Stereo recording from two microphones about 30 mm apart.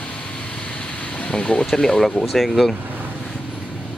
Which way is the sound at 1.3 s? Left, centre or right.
Left.